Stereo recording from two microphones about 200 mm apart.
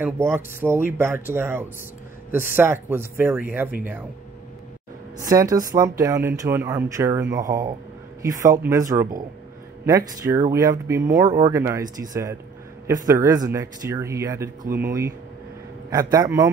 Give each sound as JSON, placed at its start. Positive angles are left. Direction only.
{"t": 0.0, "sound": "speech", "side_deg": -10}
{"t": 5.2, "sound": "speech", "side_deg": -15}